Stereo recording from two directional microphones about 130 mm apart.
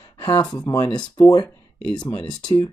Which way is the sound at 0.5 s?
30° left (ahead or behind).